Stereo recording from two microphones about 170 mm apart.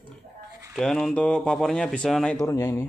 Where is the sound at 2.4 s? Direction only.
20° left (ahead or behind).